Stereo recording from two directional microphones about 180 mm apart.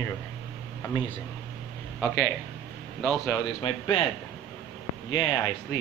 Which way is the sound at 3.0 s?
5° left (ahead or behind).